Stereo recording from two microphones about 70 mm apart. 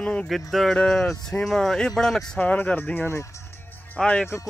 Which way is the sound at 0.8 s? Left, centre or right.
Centre.